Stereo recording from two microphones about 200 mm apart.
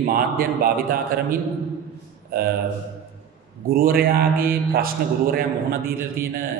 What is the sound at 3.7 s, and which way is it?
A man's voice, 45° right (ahead or behind).